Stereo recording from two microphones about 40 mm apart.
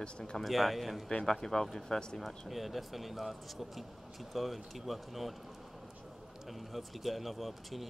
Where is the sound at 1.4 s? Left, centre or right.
Centre.